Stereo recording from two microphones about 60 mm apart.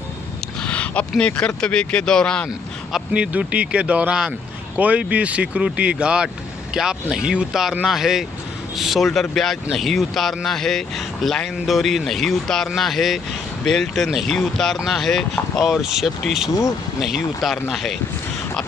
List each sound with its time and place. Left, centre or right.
0.6 s a sound: centre
1.6 s speech: centre
3.1 s speech: centre
15.6 s speech: centre